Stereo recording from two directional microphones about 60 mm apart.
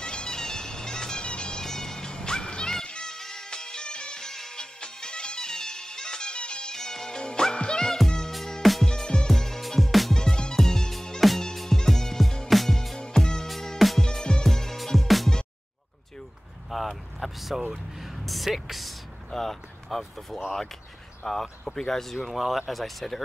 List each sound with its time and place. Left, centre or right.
0.0 s music: centre
14.0 s music: centre
16.7 s music: centre
21.3 s speech: centre